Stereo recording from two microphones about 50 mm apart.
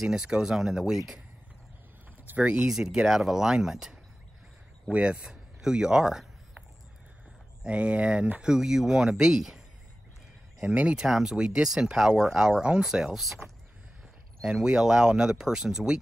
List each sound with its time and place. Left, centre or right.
0.0 s speech: centre
2.4 s speech: centre
4.9 s speech: right
7.6 s speech: right; by 9.6 s centre
10.7 s speech: right
11.0 s speech: centre
13.4 s a sound: centre
14.4 s speech: centre